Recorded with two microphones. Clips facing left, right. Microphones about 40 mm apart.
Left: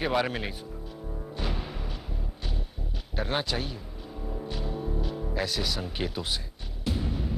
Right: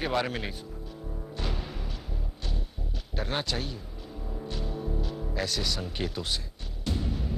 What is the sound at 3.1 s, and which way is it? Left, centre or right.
Music, centre.